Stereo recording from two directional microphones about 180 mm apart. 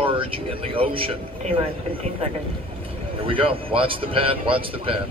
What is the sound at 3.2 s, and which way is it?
Speech, 30° right (ahead or behind).